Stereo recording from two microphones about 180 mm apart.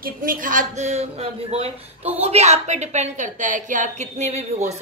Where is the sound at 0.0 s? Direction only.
50° right (ahead or behind).